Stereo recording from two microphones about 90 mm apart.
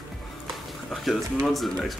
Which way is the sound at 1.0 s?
Centre (ahead or behind).